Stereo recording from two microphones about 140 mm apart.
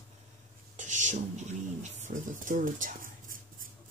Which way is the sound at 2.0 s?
65° right (ahead or behind).